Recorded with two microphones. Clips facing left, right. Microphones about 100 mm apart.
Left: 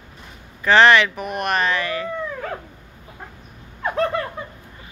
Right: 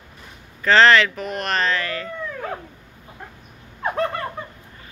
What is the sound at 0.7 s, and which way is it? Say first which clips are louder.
Speech: left 1 dB; 15° left (ahead or behind).